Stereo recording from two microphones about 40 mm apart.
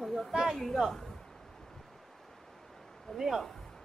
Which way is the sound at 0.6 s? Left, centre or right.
Centre.